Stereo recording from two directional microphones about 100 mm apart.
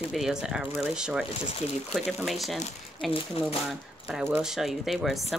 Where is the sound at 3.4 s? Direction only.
70° left (ahead or behind).